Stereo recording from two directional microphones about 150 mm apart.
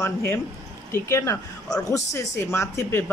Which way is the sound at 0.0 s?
15° left (ahead or behind).